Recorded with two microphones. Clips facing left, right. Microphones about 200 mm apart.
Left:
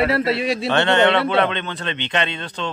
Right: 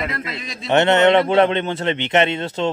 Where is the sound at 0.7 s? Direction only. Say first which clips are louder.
Right 4 dB; 20° right (ahead or behind).